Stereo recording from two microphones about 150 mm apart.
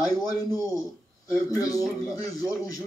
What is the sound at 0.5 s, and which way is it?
Speech, 25° left (ahead or behind).